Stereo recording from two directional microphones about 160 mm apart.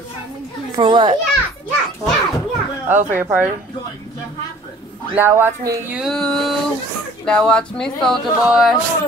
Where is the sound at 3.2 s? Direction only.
10° right (ahead or behind).